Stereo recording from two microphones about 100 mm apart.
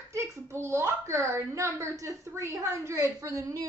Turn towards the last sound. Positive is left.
turn(degrees=-35)  # may be behind; listen again after turning